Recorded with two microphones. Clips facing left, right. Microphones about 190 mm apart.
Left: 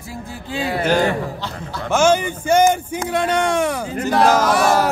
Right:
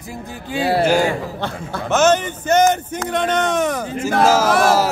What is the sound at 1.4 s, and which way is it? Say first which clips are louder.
Speech: right 3 dB; 55° right (ahead or behind).